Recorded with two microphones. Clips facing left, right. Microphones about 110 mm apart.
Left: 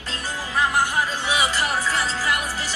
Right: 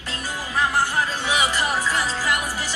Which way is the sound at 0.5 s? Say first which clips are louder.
Even; 15° left (ahead or behind).